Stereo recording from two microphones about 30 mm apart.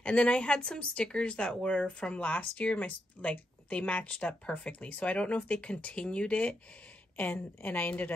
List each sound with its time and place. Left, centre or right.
0.0 s a woman's voice: left
5.2 s a woman's voice: left
7.2 s a woman's voice: left